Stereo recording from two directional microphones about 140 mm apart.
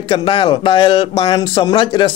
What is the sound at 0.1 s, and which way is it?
Speech, 35° left (ahead or behind).